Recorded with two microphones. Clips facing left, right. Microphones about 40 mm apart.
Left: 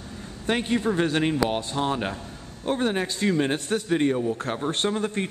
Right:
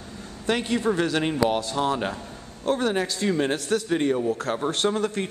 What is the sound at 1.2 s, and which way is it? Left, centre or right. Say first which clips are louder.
Speech: right 1 dB; centre.